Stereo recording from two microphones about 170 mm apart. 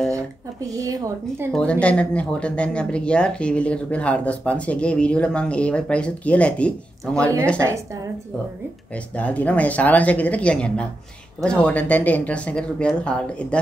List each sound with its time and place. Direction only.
0.7 s speech: 20° right (ahead or behind)
1.5 s speech: 5° left (ahead or behind)
7.5 s a woman's voice: 15° right (ahead or behind)
8.9 s speech: 10° left (ahead or behind)